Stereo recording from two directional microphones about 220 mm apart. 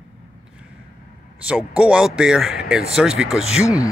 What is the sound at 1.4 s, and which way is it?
Speech, 5° right (ahead or behind).